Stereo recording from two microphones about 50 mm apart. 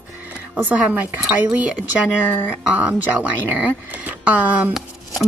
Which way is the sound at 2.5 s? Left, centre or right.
Right.